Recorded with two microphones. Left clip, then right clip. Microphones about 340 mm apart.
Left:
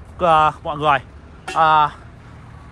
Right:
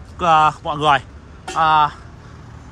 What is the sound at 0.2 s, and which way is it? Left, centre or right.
Speech, centre.